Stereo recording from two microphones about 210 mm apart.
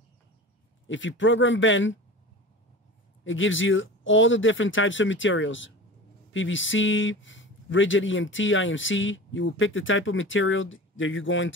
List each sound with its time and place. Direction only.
0.8 s speech: 65° left (ahead or behind)
3.3 s speech: 65° left (ahead or behind)